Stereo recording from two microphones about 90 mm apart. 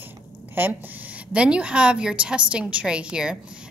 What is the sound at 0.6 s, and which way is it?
A woman's voice, 20° right (ahead or behind).